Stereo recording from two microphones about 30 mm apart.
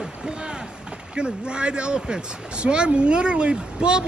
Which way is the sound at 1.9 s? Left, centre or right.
Centre.